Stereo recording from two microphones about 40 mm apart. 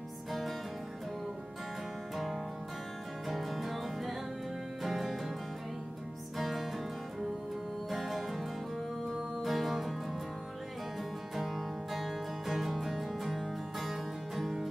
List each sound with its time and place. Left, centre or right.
0.3 s music: centre
2.1 s music: centre
6.3 s music: centre
7.9 s music: centre
11.3 s music: centre